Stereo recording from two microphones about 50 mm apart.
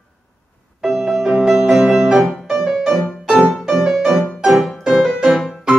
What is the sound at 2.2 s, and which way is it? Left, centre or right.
Music, centre.